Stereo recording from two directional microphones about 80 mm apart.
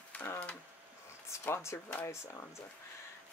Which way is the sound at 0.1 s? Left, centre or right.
Centre.